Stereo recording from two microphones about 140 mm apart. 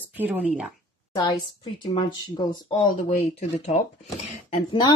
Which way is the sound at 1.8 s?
35° left (ahead or behind).